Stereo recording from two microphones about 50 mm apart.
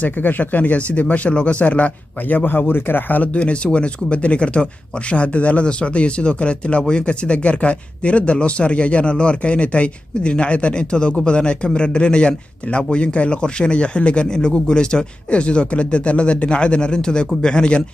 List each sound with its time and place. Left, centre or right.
0.0 s speech: left
3.3 s speech: left